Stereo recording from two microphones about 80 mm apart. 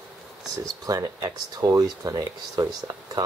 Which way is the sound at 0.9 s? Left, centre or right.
Right.